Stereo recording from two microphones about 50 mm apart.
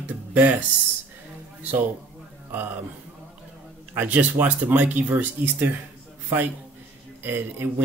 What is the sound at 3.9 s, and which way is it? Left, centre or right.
Speech, right.